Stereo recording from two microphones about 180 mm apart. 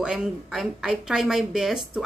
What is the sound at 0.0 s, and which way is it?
Speech, 5° right (ahead or behind).